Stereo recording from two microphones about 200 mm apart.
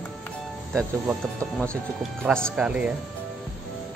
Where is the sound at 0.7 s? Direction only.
Centre (ahead or behind).